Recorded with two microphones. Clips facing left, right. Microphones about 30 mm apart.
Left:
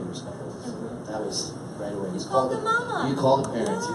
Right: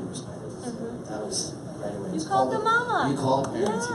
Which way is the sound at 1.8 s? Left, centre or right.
Centre.